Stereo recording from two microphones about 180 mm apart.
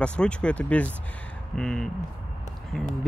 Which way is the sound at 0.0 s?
5° left (ahead or behind).